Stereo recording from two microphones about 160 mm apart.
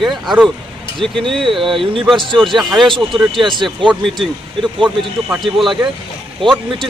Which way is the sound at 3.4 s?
30° right (ahead or behind).